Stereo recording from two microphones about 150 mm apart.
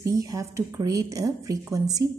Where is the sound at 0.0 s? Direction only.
20° right (ahead or behind).